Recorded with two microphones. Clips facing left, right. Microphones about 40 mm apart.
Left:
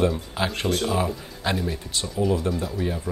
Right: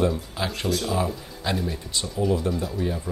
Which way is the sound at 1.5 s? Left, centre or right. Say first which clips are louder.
Left 1 dB; centre.